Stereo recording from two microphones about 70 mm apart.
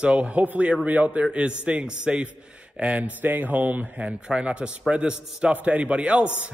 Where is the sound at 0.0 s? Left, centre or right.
Centre.